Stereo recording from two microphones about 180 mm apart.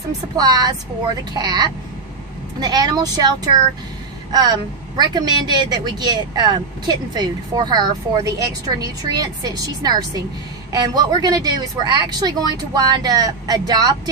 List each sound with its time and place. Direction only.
0.4 s a woman's voice: 20° right (ahead or behind)